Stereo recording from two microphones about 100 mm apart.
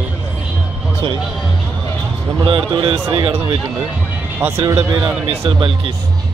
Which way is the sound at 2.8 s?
60° right (ahead or behind).